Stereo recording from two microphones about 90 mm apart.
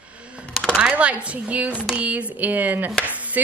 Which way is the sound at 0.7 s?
10° right (ahead or behind).